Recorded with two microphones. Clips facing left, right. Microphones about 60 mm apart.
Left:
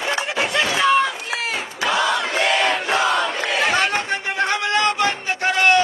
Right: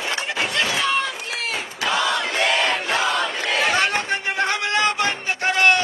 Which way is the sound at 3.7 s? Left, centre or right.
Centre.